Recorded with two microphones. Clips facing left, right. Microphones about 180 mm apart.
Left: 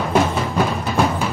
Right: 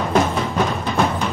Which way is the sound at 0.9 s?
5° left (ahead or behind).